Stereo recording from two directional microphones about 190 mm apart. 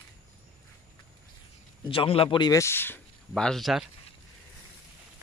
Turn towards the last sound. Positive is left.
turn(degrees=0)  # may be behind; listen again after turning